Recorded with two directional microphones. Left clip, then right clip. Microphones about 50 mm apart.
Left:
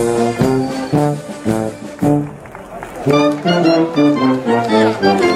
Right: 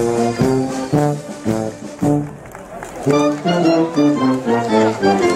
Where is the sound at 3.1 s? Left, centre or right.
Left.